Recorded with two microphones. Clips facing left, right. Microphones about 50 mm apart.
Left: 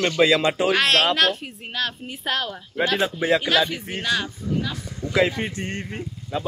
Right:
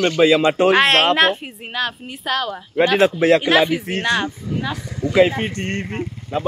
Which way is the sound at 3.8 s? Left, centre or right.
Right.